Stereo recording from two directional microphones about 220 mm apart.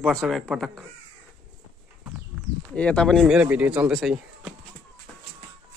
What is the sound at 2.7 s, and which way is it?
Speech, 5° left (ahead or behind).